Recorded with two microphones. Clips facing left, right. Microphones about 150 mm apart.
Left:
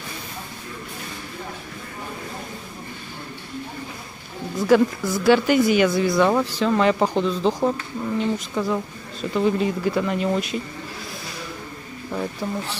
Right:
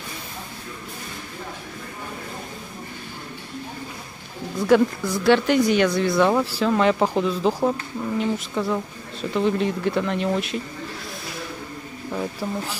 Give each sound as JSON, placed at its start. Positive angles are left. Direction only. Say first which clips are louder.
{"t": 4.6, "sound": "speech", "louder": "even", "side_deg": 0}
{"t": 12.1, "sound": "speech", "louder": "even", "side_deg": -5}